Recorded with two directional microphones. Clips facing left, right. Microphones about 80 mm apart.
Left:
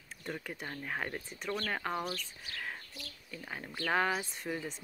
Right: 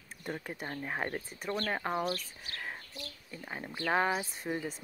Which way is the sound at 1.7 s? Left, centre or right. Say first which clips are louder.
Right 3 dB; centre.